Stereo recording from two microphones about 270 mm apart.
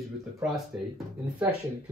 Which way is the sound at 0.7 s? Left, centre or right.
Centre.